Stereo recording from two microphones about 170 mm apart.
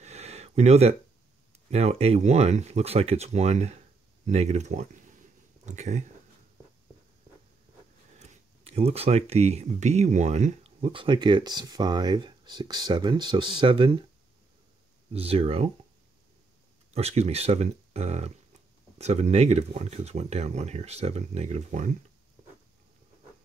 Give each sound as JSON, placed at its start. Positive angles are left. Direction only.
{"t": 0.0, "sound": "a sound", "side_deg": -40}
{"t": 1.7, "sound": "speech", "side_deg": -35}
{"t": 8.2, "sound": "speech", "side_deg": -40}
{"t": 15.1, "sound": "speech", "side_deg": -35}
{"t": 16.9, "sound": "speech", "side_deg": -40}